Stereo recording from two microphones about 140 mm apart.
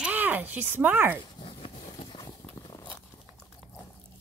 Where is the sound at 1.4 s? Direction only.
40° left (ahead or behind).